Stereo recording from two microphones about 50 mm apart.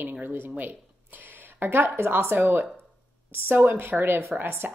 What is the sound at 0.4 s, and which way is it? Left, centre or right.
A woman's voice, right.